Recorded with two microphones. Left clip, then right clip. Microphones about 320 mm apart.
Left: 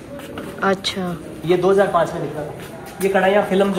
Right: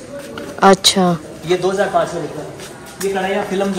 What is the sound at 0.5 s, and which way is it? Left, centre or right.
Speech, centre.